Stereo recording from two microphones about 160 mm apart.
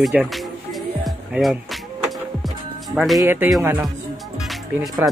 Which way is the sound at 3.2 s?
15° right (ahead or behind).